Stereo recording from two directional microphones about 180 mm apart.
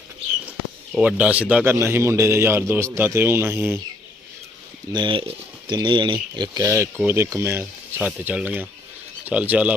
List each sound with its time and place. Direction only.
0.5 s a man's voice: 10° right (ahead or behind)
4.9 s a man's voice: 30° right (ahead or behind); by 9.8 s 10° right (ahead or behind)